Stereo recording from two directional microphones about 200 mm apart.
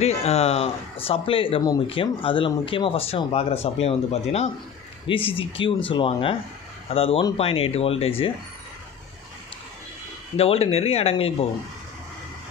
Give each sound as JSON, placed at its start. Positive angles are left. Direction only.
{"t": 0.0, "sound": "speech", "side_deg": 30}
{"t": 10.3, "sound": "speech", "side_deg": 30}